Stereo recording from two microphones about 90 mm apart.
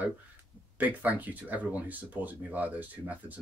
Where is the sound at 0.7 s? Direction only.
20° right (ahead or behind).